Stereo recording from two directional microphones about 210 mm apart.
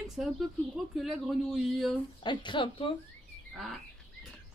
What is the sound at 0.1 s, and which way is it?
Speech, centre (ahead or behind).